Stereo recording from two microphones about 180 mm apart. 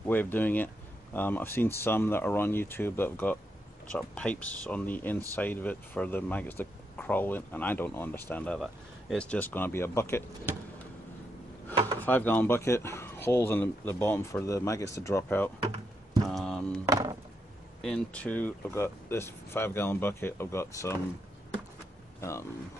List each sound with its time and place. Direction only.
0.0 s speech: 10° left (ahead or behind)
12.0 s speech: 10° left (ahead or behind)
16.3 s a sound: centre (ahead or behind)
16.8 s chop: 20° right (ahead or behind)
17.8 s speech: 5° left (ahead or behind)
22.2 s speech: 15° left (ahead or behind)